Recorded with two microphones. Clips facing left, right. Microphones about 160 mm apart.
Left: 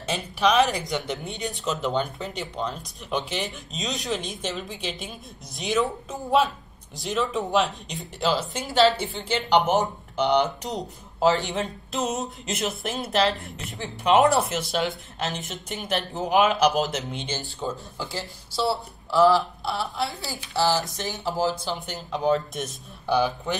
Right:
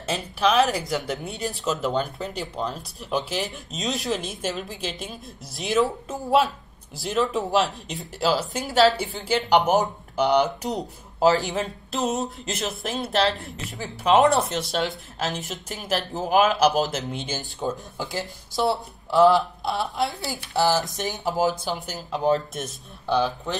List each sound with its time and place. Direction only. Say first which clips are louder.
0.0 s speech: even; centre (ahead or behind)
17.6 s speech: right 4 dB; 15° right (ahead or behind)
21.7 s speech: right 1 dB; centre (ahead or behind)